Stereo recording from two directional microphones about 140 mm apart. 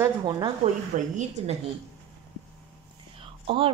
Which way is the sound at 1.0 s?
55° right (ahead or behind).